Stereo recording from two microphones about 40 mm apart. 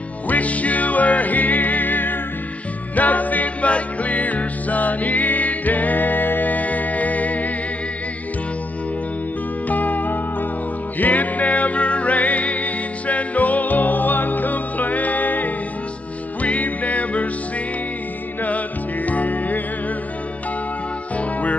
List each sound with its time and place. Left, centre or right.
0.3 s music: left
9.7 s music: left
19.0 s music: left
21.2 s music: left